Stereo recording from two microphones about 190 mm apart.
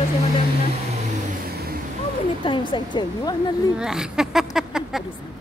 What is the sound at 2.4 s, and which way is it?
A woman's voice, 25° left (ahead or behind).